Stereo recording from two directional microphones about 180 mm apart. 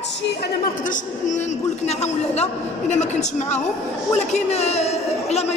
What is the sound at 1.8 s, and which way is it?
A woman's voice, 35° left (ahead or behind).